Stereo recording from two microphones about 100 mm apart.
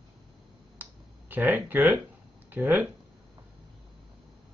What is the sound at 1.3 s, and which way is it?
Speech, 20° right (ahead or behind).